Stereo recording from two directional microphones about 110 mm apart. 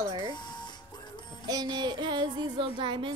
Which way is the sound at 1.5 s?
40° right (ahead or behind).